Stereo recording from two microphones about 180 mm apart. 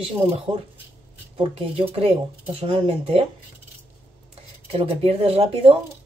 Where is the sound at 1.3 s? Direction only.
30° right (ahead or behind).